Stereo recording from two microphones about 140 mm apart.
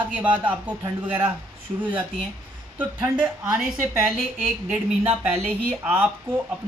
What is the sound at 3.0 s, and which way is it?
Speech, 15° right (ahead or behind).